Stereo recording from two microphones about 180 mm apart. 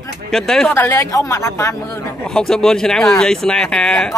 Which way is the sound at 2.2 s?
5° left (ahead or behind).